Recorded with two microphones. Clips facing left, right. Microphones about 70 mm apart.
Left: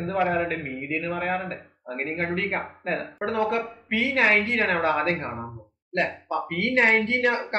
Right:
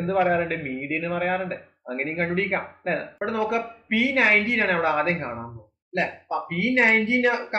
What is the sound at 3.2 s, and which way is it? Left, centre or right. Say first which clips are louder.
A woman's voice: even; centre.